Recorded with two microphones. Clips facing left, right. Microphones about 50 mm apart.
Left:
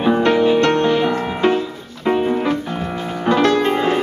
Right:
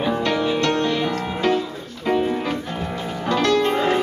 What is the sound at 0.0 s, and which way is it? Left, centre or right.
Music, left.